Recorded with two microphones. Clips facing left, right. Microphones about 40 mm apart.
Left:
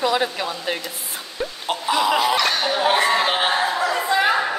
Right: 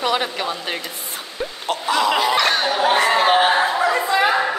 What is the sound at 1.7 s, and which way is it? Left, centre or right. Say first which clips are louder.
Speech: right 1 dB; centre.